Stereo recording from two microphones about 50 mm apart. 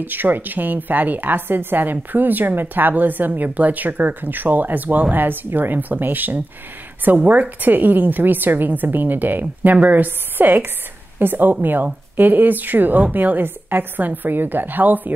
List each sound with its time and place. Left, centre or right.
0.0 s a woman's voice: right